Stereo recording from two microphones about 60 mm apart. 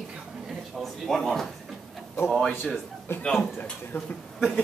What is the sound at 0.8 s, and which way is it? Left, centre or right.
Speech, centre.